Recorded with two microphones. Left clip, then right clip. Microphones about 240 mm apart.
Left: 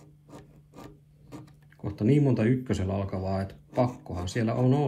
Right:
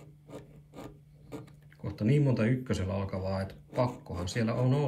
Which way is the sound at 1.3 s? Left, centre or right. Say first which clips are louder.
Right 2 dB; centre.